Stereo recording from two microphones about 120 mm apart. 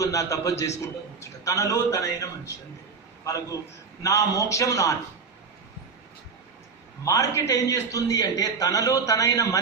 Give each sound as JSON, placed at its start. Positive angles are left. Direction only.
{"t": 0.0, "sound": "a man's voice", "side_deg": 25}
{"t": 4.0, "sound": "a man's voice", "side_deg": 25}
{"t": 7.1, "sound": "a man's voice", "side_deg": 25}